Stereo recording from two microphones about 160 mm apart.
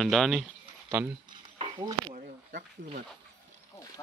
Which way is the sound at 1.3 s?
30° right (ahead or behind).